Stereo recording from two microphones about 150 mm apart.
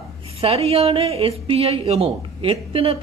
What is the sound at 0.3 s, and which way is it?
A woman's voice, 40° right (ahead or behind).